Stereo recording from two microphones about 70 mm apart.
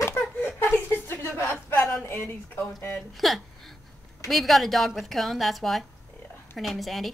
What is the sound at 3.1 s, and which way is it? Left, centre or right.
Speech, centre.